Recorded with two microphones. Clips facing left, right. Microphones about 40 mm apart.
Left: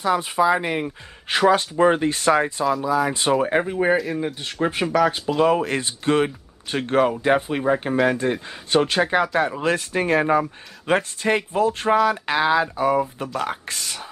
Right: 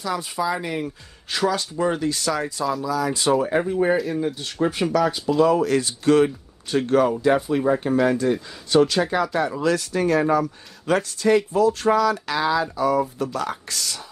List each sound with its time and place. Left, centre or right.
0.0 s speech: left
3.7 s speech: left